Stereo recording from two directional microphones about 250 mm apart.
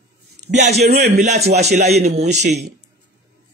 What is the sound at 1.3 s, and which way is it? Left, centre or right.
Speech, right.